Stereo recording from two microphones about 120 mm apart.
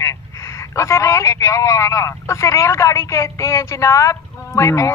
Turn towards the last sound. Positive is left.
turn(degrees=25)  # may be behind; listen again after turning